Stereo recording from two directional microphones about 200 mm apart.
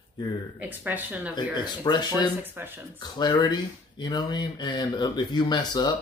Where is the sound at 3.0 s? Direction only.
20° left (ahead or behind).